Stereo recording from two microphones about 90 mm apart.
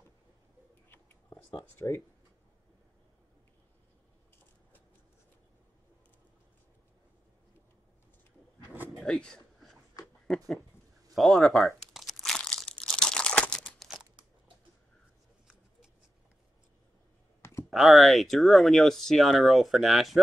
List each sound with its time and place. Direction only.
0.8 s whispering: 25° left (ahead or behind)
1.8 s speech: 45° left (ahead or behind)
8.9 s a sound: 10° left (ahead or behind)
10.0 s a sound: 45° left (ahead or behind)
11.1 s crumpling: centre (ahead or behind)
17.6 s speech: centre (ahead or behind)